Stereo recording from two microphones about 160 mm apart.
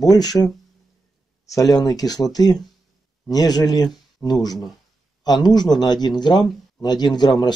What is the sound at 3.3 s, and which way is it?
Speech, 25° left (ahead or behind).